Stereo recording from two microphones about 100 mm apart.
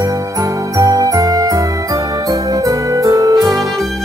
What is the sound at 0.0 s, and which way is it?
Jingle bell, 35° right (ahead or behind).